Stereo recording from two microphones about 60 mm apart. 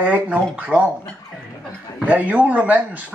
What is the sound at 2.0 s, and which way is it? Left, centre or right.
Speech, right.